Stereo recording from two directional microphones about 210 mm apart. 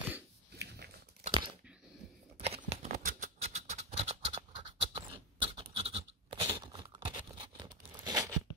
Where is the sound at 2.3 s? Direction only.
30° right (ahead or behind).